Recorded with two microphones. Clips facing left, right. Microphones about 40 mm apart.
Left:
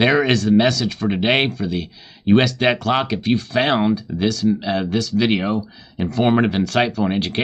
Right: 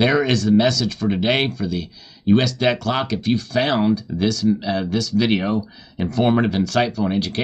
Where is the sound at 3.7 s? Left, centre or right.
Left.